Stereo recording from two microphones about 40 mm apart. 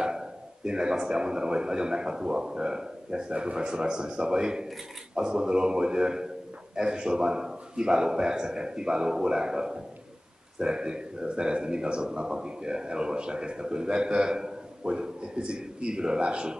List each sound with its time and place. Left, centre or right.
0.0 s speech: centre